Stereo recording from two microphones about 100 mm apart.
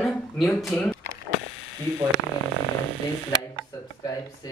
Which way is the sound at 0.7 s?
15° left (ahead or behind).